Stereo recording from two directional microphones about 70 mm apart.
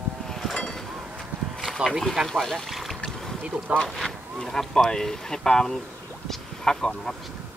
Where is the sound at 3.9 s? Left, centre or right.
Centre.